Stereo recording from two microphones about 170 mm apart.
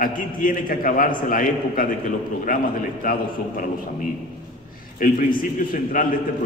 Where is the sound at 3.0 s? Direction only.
55° left (ahead or behind).